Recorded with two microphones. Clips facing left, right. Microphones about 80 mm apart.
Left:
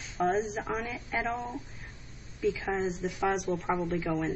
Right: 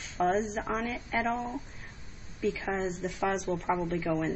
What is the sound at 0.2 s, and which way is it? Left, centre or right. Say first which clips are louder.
Speech: right 1 dB; centre.